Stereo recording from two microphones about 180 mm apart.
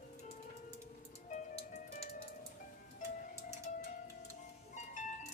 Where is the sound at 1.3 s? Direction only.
35° left (ahead or behind).